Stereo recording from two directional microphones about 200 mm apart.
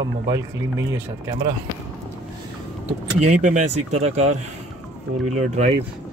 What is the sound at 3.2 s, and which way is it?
Speech, 40° right (ahead or behind).